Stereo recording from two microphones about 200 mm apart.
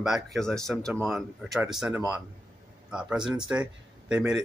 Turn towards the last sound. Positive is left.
turn(degrees=-5)  # may be behind; listen again after turning